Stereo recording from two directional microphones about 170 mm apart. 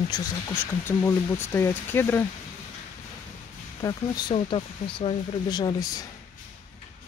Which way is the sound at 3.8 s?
20° left (ahead or behind).